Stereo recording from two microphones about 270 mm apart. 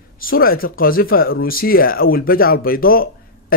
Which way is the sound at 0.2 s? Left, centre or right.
Left.